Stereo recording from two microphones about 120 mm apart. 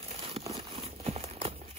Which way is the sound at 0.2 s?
55° right (ahead or behind).